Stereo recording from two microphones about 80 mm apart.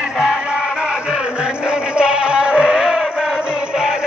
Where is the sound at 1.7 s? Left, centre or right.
Centre.